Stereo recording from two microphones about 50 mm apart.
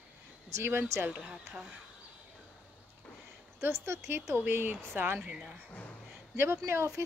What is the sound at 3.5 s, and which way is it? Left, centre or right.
Speech, right.